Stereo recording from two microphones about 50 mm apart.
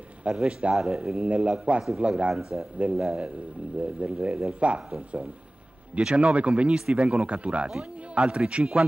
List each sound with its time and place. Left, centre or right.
0.3 s speech: centre
5.9 s a man's voice: right